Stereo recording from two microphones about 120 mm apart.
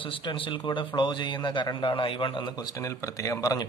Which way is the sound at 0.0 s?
45° left (ahead or behind).